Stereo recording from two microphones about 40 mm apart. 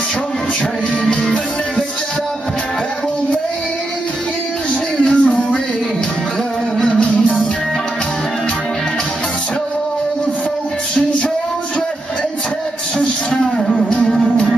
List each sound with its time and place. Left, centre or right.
1.0 s music: centre
5.1 s music: left
6.8 s music: left
13.0 s a sound: centre
13.8 s music: left